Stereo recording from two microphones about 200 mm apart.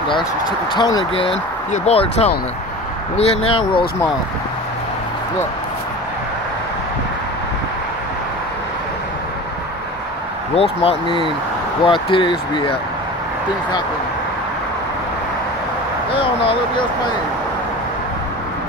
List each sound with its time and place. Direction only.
0.7 s speech: 20° left (ahead or behind)
10.5 s speech: 30° left (ahead or behind)
16.1 s a sound: 25° left (ahead or behind)